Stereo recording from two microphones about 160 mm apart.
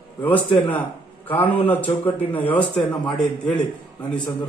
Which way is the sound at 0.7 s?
10° left (ahead or behind).